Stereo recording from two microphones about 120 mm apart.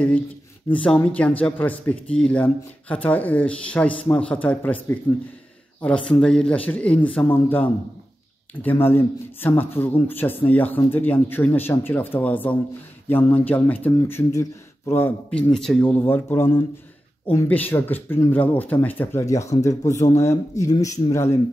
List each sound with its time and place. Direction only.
0.8 s a man's voice: 10° left (ahead or behind)
15.5 s a man's voice: 5° left (ahead or behind); by 21.4 s 25° left (ahead or behind)